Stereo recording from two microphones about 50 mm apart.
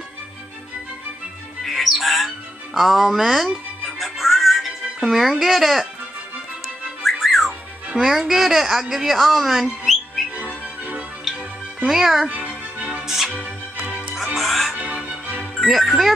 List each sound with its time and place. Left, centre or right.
1.6 s music: centre
7.0 s music: centre
7.9 s a woman's voice: centre
10.3 s music: right
11.3 s music: centre
11.9 s a woman's voice: centre
12.3 s music: right
13.0 s music: centre
13.4 s music: right
14.1 s music: centre
15.6 s speech: centre